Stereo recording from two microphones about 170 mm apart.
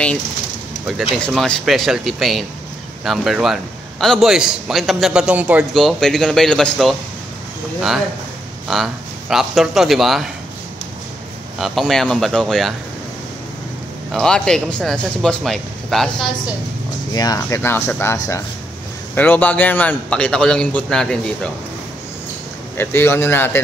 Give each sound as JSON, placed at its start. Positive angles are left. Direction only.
{"t": 0.8, "sound": "a man's voice", "side_deg": 0}
{"t": 8.6, "sound": "a man's voice", "side_deg": 0}
{"t": 11.5, "sound": "a man's voice", "side_deg": 0}
{"t": 14.1, "sound": "a man's voice", "side_deg": 5}
{"t": 17.1, "sound": "a man's voice", "side_deg": 20}
{"t": 22.8, "sound": "a man's voice", "side_deg": 15}